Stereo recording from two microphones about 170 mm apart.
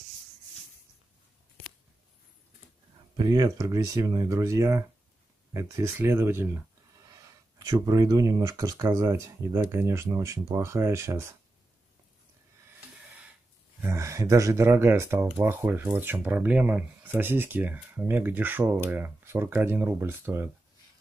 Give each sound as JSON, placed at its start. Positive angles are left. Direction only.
{"t": 3.2, "sound": "speech", "side_deg": -20}
{"t": 13.0, "sound": "a sound", "side_deg": -5}
{"t": 13.7, "sound": "speech", "side_deg": -15}